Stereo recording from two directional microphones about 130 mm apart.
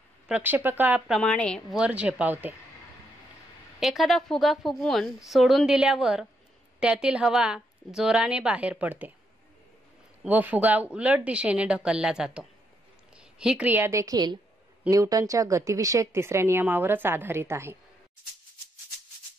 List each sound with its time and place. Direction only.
0.3 s a woman's voice: 15° right (ahead or behind)
1.2 s a woman's voice: 5° left (ahead or behind)
1.8 s a woman's voice: 10° right (ahead or behind)
3.8 s a woman's voice: centre (ahead or behind)
10.2 s a woman's voice: 15° right (ahead or behind)